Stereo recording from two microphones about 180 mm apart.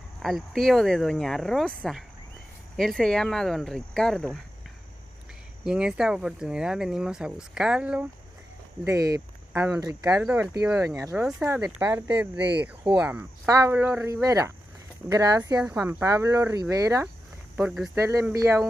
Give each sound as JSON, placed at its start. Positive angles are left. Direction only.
{"t": 0.2, "sound": "speech", "side_deg": 0}
{"t": 5.6, "sound": "speech", "side_deg": -5}
{"t": 8.8, "sound": "speech", "side_deg": -20}
{"t": 10.2, "sound": "speech", "side_deg": -5}
{"t": 10.7, "sound": "speech", "side_deg": -15}
{"t": 12.5, "sound": "speech", "side_deg": -10}
{"t": 15.6, "sound": "speech", "side_deg": -10}
{"t": 17.6, "sound": "speech", "side_deg": -5}
{"t": 17.9, "sound": "speech", "side_deg": -15}